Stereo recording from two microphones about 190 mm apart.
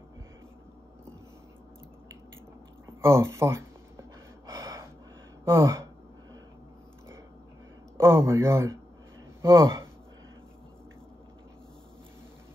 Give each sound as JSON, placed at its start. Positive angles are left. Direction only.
{"t": 3.0, "sound": "a sound", "side_deg": -15}
{"t": 4.5, "sound": "gasp", "side_deg": -20}
{"t": 5.4, "sound": "speech", "side_deg": -15}
{"t": 8.0, "sound": "speech", "side_deg": -15}